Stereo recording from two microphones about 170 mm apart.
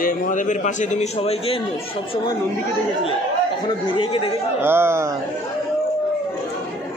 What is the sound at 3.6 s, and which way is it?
Speech, 30° left (ahead or behind).